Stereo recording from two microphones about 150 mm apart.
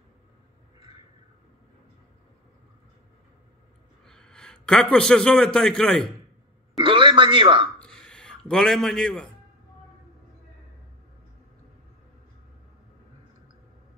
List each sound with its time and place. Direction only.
4.0 s a man's voice: 5° left (ahead or behind)
6.8 s speech: 35° right (ahead or behind)
7.8 s a sound: 5° left (ahead or behind)